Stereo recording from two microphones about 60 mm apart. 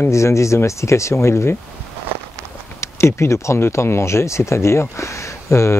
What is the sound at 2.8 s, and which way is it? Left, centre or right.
Speech, left.